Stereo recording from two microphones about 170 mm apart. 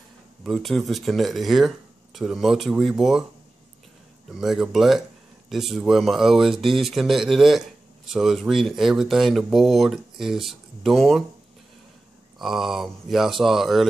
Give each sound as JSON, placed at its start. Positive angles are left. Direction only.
{"t": 0.4, "sound": "speech", "side_deg": 0}
{"t": 4.3, "sound": "speech", "side_deg": 0}
{"t": 12.4, "sound": "speech", "side_deg": 0}